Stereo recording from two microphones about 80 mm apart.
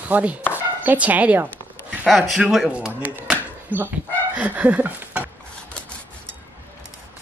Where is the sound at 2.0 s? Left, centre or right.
Centre.